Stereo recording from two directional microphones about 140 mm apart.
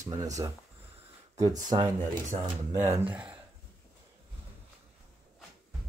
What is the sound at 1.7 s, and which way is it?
Speech, 45° right (ahead or behind).